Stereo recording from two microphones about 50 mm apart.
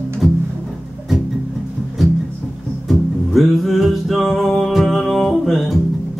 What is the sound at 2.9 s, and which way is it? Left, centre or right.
Music, centre.